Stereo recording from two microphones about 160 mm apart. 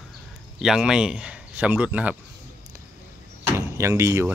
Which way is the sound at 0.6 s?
5° right (ahead or behind).